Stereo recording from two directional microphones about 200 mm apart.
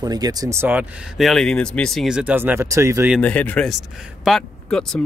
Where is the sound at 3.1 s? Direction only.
5° left (ahead or behind).